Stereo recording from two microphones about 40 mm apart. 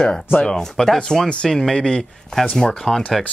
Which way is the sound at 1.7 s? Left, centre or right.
Left.